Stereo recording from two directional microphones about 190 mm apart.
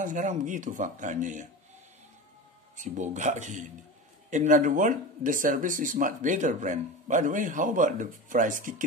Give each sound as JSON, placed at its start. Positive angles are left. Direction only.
{"t": 0.0, "sound": "speech", "side_deg": -40}
{"t": 2.8, "sound": "speech", "side_deg": -40}